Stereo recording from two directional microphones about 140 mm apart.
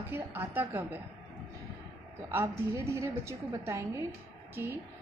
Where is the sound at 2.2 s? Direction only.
20° right (ahead or behind).